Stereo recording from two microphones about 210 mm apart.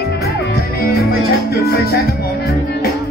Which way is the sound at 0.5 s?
50° left (ahead or behind).